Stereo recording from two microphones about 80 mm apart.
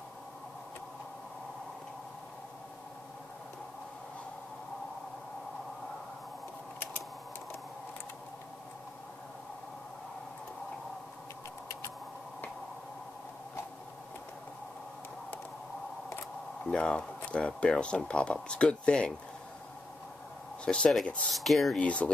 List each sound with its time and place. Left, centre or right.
16.6 s speech: centre
20.6 s speech: centre
21.3 s speech: centre
21.7 s speech: centre